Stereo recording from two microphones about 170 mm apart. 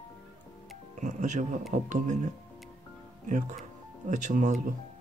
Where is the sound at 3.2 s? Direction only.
45° right (ahead or behind).